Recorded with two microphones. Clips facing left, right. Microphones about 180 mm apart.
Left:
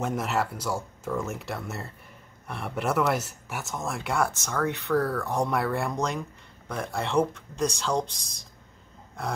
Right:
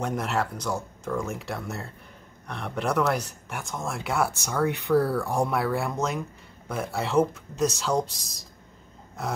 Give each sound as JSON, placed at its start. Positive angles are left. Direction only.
{"t": 0.0, "sound": "speech", "side_deg": 0}
{"t": 9.2, "sound": "speech", "side_deg": -5}